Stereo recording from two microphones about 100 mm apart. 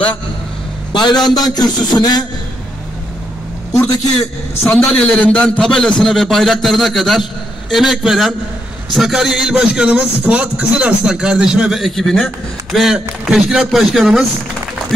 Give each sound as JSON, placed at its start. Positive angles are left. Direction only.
{"t": 0.9, "sound": "a man's voice", "side_deg": 45}
{"t": 4.7, "sound": "a man's voice", "side_deg": 15}